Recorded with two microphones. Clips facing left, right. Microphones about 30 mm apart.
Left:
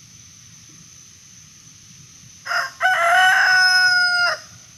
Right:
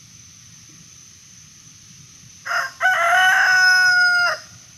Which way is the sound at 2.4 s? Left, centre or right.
Left.